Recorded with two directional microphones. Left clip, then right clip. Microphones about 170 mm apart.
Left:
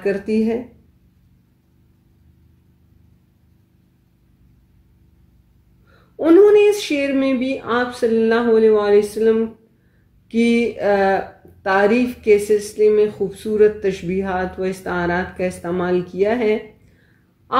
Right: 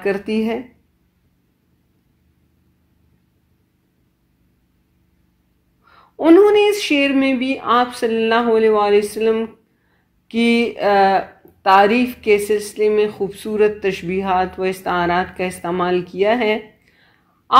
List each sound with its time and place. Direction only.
0.0 s speech: 20° right (ahead or behind)
6.1 s speech: 20° right (ahead or behind)